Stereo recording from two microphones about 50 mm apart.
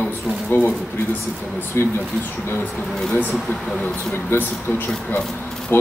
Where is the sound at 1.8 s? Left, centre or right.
Left.